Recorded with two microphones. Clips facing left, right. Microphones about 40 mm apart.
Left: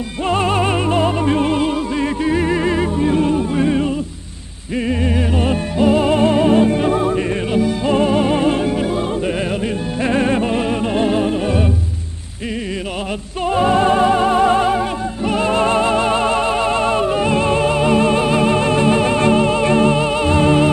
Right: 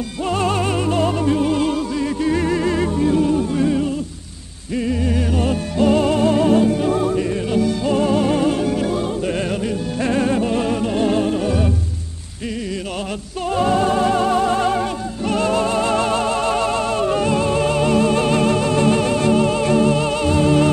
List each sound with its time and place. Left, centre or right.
0.3 s music: left
2.2 s music: left
5.8 s music: centre
10.0 s music: left
13.5 s music: left
15.6 s music: left
17.0 s music: centre
17.3 s music: left